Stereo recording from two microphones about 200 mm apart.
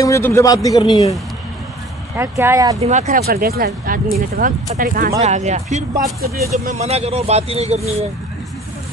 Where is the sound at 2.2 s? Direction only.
15° right (ahead or behind).